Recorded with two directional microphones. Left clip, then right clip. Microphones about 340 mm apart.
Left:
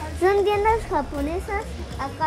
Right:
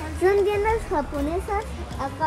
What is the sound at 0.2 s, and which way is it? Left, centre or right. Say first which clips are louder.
Speech: left 1 dB; left.